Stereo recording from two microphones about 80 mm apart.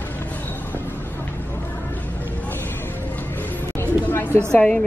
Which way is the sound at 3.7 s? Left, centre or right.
Left.